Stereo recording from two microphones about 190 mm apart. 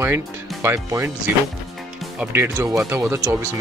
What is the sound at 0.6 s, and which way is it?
Speech, 15° right (ahead or behind).